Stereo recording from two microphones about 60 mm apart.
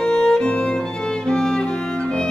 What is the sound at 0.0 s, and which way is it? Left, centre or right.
Music, centre.